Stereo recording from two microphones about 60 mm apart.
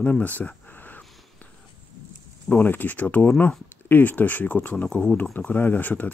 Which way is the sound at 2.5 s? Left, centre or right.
Left.